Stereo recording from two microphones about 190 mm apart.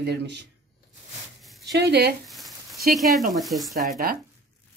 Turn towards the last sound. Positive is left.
turn(degrees=-50)  # may be behind; listen again after turning